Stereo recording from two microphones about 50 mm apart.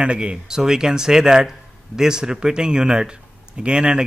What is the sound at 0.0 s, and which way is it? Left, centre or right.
A man's voice, right.